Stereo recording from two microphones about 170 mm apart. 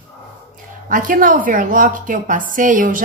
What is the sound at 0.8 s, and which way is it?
A woman's voice, 55° right (ahead or behind).